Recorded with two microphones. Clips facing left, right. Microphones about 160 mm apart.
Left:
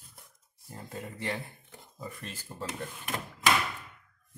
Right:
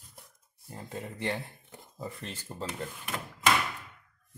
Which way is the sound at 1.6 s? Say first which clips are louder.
Right 2 dB; 30° right (ahead or behind).